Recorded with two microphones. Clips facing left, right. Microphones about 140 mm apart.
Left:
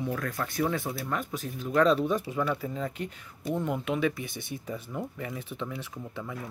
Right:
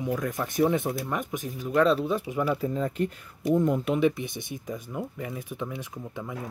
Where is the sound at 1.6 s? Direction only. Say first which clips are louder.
Right 1 dB; 5° right (ahead or behind).